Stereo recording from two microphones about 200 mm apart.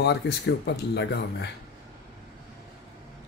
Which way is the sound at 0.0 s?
55° left (ahead or behind).